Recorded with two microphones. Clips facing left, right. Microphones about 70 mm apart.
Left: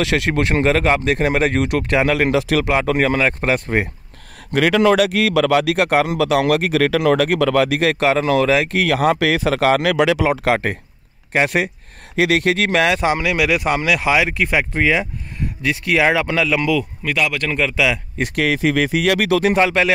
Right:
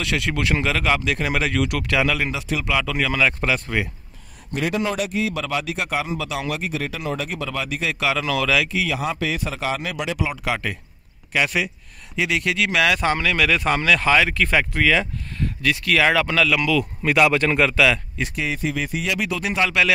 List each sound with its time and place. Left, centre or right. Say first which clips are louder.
0.0 s speech: left 6 dB; left
2.2 s speech: left 9 dB; left
2.7 s speech: left 4 dB; left
4.5 s speech: left 9 dB; left
8.0 s speech: left 5 dB; left
8.6 s speech: left 8 dB; left
10.3 s speech: left 8 dB; left
12.8 s speech: left 3 dB; left
17.0 s speech: right 3 dB; centre
17.7 s speech: even; centre
18.3 s speech: left 9 dB; left
19.6 s speech: left 4 dB; left